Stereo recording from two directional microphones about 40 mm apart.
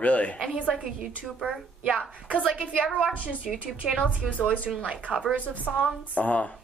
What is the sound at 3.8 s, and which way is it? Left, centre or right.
Speech, centre.